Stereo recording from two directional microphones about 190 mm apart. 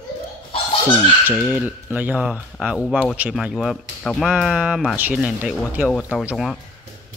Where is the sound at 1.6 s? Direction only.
10° right (ahead or behind).